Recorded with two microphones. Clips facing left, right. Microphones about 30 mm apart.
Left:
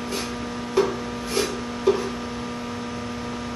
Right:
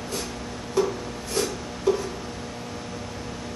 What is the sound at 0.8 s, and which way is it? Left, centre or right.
Music, left.